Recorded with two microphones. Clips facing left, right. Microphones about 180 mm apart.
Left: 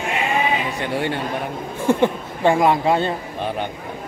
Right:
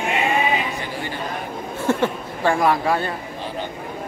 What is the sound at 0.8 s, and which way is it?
Speech, 70° left (ahead or behind).